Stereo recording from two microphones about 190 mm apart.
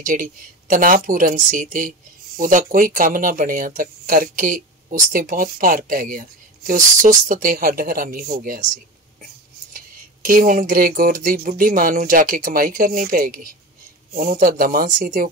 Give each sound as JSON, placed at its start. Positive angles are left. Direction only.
{"t": 0.0, "sound": "speech", "side_deg": -45}
{"t": 9.7, "sound": "speech", "side_deg": -50}